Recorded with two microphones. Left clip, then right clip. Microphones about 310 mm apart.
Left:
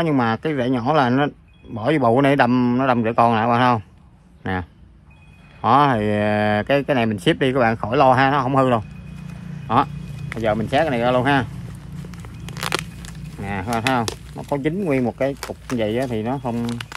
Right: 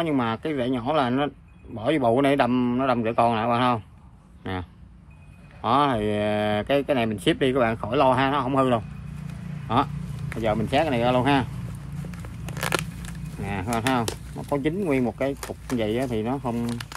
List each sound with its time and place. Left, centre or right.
0.0 s a man's voice: left
10.4 s a man's voice: left
12.1 s a sound: centre
13.4 s a man's voice: left
15.3 s speech: centre
15.8 s speech: left